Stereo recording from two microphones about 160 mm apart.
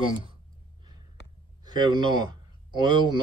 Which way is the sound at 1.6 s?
25° right (ahead or behind).